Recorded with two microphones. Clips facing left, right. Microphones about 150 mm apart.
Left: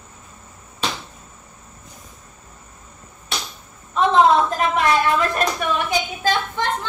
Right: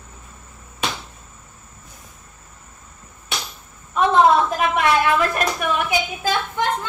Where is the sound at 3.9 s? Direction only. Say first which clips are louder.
Even; 5° right (ahead or behind).